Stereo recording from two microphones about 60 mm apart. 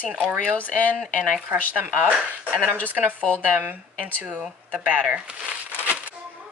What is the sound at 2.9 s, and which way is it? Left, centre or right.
Speech, right.